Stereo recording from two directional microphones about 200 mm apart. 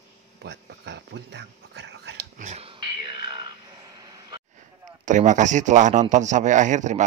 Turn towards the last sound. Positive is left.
turn(degrees=-35)  # may be behind; listen again after turning